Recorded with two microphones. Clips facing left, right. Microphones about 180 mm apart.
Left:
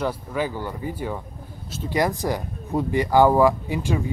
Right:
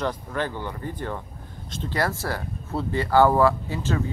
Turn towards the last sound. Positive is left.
turn(degrees=15)  # may be behind; listen again after turning